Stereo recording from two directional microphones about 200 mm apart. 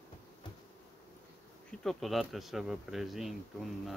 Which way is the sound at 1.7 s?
5° left (ahead or behind).